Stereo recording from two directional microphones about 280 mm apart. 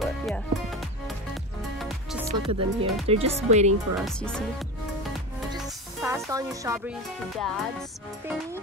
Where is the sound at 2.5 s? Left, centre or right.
Right.